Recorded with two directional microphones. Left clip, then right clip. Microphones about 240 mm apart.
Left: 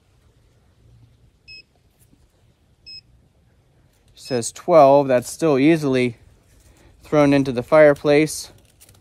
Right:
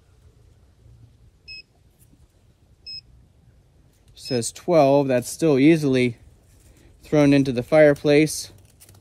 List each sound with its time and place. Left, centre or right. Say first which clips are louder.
1.4 s vehicle: right 2 dB; centre
4.1 s speech: left 2 dB; left